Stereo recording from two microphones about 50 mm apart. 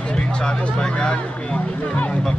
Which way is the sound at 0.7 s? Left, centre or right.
Centre.